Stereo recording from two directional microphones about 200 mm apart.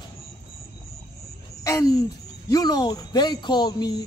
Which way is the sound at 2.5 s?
20° left (ahead or behind).